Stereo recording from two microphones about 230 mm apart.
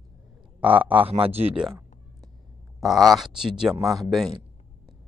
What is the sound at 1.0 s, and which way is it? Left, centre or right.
Speech, right.